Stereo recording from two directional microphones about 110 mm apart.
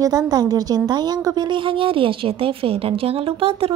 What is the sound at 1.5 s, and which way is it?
A woman's voice, 50° right (ahead or behind).